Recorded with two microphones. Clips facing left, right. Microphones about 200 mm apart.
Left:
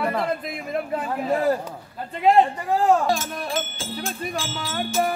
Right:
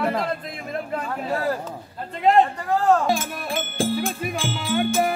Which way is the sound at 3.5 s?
55° right (ahead or behind).